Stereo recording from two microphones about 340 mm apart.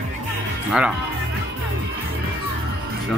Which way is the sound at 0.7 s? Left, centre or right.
Centre.